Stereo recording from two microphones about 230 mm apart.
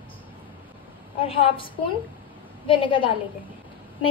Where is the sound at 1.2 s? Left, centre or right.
Left.